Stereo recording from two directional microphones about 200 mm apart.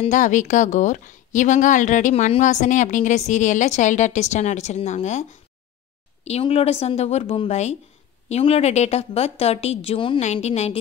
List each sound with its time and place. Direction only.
0.0 s a woman's voice: 40° left (ahead or behind)